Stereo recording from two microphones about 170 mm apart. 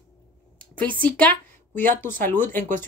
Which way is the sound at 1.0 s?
10° left (ahead or behind).